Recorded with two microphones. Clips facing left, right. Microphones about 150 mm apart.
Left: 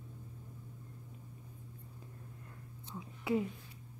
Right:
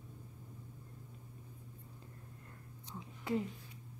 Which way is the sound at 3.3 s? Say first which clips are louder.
Left 3 dB; 10° left (ahead or behind).